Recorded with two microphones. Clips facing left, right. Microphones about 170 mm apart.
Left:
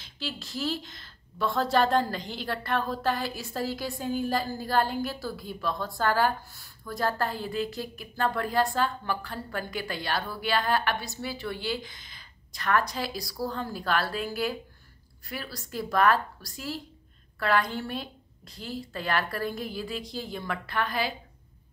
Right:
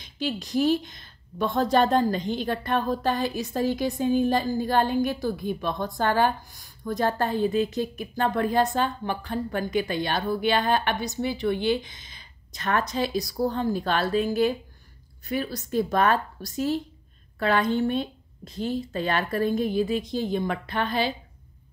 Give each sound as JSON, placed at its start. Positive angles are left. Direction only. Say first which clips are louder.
{"t": 0.0, "sound": "a woman's voice", "louder": "right 8 dB", "side_deg": -20}